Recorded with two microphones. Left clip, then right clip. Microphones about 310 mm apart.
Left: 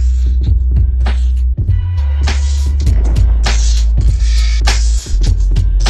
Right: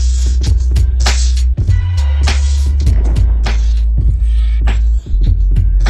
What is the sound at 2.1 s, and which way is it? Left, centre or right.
Music, centre.